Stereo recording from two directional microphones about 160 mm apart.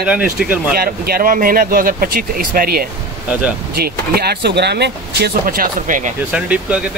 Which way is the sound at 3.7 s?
80° right.